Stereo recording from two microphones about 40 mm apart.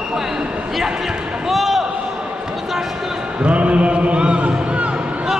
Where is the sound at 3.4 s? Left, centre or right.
Right.